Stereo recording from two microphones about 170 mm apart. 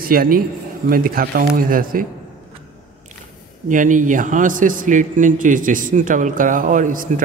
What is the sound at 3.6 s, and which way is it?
A man's voice, 50° right (ahead or behind).